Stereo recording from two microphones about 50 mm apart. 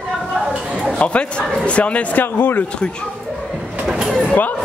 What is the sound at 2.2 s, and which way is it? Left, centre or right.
Speech, left.